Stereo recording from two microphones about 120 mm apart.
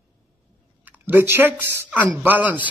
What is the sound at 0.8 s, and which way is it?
Speech, 15° right (ahead or behind).